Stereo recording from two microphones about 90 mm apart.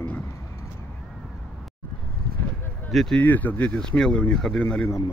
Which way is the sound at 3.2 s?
20° left (ahead or behind).